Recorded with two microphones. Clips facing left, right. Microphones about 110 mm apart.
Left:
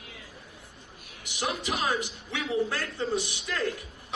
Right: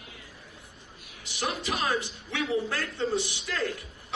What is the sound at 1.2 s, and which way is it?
A man's voice, 20° left (ahead or behind).